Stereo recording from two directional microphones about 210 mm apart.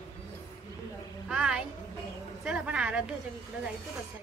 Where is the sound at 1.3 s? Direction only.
5° right (ahead or behind).